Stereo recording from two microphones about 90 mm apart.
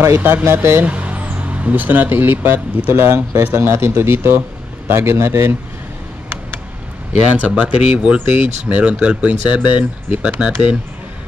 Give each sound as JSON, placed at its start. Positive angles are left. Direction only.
{"t": 0.0, "sound": "speech", "side_deg": -25}
{"t": 0.8, "sound": "speech", "side_deg": -15}
{"t": 7.1, "sound": "speech", "side_deg": -20}